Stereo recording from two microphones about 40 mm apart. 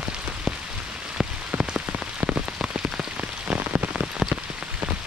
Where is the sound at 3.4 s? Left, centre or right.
Right.